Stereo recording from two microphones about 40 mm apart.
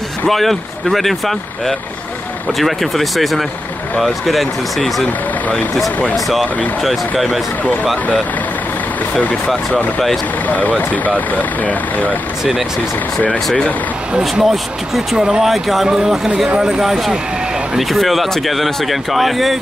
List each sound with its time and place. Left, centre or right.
0.3 s speech: centre
6.1 s speech: centre
10.4 s speech: left
14.4 s speech: centre
15.1 s speech: centre
15.4 s speech: centre
16.8 s speech: centre